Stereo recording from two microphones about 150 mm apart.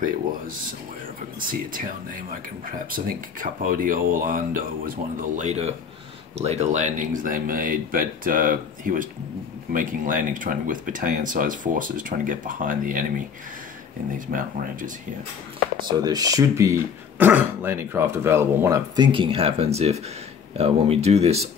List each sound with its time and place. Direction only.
1.4 s speech: 65° right (ahead or behind)
14.1 s speech: 65° right (ahead or behind)
16.0 s speech: 25° right (ahead or behind)
18.9 s speech: 35° right (ahead or behind)